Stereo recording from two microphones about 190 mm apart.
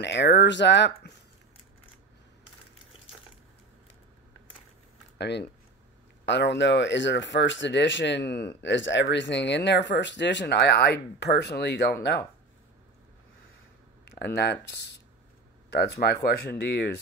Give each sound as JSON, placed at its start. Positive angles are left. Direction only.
{"t": 0.0, "sound": "speech", "side_deg": 65}
{"t": 5.1, "sound": "speech", "side_deg": 60}
{"t": 14.0, "sound": "speech", "side_deg": 55}